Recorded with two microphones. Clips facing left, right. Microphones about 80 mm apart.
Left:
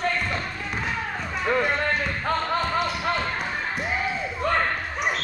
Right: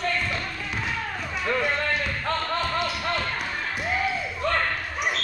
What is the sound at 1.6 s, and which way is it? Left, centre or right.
Basketball bounce, centre.